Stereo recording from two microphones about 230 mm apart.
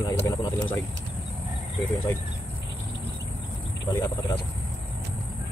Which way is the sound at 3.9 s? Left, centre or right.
Centre.